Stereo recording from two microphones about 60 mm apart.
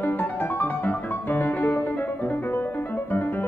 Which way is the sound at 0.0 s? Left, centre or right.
Left.